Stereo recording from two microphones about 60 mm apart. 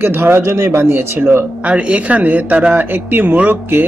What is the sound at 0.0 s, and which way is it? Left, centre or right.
Speech, right.